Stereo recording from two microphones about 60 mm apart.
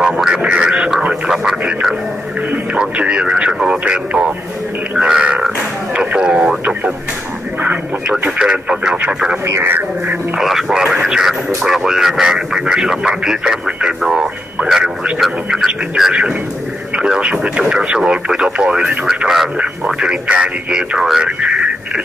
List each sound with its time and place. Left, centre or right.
0.0 s speech: centre
2.8 s speech: centre
4.9 s grunt: centre
5.9 s radio: centre
8.2 s speech: centre
9.7 s speech: right
10.3 s speech: centre
15.1 s speech: centre
19.6 s speech: centre